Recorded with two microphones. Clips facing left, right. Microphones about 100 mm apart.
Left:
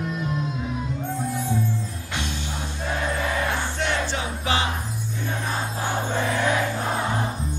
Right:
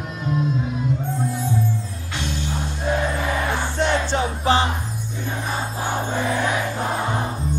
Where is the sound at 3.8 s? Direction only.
35° right (ahead or behind).